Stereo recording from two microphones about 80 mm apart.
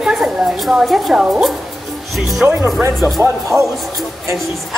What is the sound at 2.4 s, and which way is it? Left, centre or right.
Speech, right.